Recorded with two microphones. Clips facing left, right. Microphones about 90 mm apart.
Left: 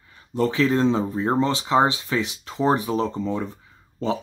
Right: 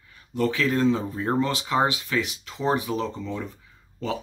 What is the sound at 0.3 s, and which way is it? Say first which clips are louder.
Speech: left 3 dB; 30° left (ahead or behind).